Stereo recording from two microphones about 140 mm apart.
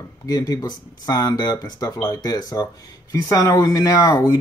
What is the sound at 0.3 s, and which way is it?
Speech, 25° left (ahead or behind).